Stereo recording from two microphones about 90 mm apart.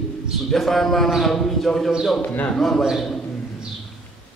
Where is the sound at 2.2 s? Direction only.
20° left (ahead or behind).